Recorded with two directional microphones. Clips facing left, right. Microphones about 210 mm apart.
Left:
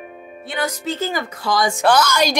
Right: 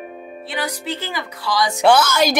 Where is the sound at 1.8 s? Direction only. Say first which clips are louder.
Right 3 dB; 5° right (ahead or behind).